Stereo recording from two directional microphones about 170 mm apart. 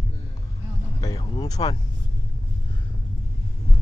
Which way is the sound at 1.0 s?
20° left (ahead or behind).